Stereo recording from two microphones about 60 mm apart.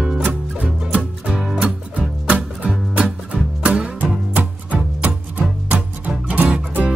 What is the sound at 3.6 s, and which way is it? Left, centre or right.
Music, right.